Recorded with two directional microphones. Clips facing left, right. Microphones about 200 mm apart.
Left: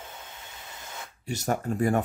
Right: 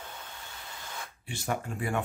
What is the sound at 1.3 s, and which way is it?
Speech, 40° left (ahead or behind).